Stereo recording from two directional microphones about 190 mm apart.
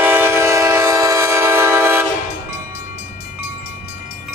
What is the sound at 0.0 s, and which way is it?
Train, 10° right (ahead or behind).